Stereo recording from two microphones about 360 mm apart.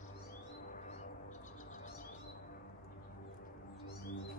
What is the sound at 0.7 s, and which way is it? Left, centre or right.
Music, centre.